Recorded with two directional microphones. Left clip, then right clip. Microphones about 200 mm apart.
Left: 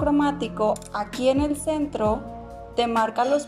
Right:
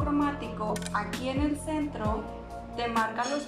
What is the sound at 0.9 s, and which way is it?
A woman's voice, 40° left (ahead or behind).